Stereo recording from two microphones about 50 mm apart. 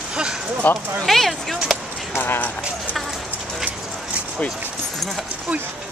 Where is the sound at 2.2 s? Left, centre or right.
Left.